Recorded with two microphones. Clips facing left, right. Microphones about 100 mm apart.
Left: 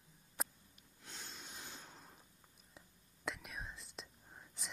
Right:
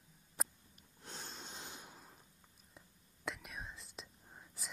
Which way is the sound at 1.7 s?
15° right (ahead or behind).